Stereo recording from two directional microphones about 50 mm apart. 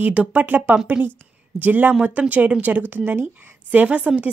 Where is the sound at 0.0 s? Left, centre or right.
Right.